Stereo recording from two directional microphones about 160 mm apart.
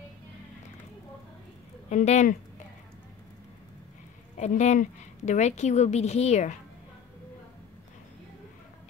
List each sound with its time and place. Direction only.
1.9 s a woman's voice: 45° left (ahead or behind)
4.4 s a woman's voice: 50° left (ahead or behind)